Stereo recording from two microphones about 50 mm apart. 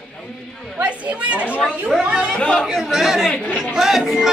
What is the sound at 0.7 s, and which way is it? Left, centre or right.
Chatter, right.